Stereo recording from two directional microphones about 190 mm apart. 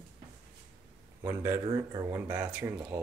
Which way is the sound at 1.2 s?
15° right (ahead or behind).